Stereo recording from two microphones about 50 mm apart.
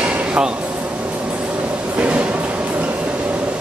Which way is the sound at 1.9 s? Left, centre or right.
Right.